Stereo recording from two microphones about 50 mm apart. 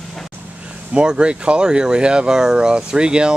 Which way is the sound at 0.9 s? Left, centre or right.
Centre.